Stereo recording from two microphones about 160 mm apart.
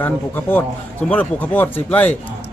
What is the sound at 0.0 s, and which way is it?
A man's voice, 10° left (ahead or behind).